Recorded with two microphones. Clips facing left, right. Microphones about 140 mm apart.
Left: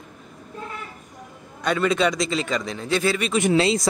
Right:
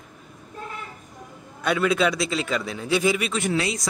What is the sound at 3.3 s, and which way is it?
Speech, 20° left (ahead or behind).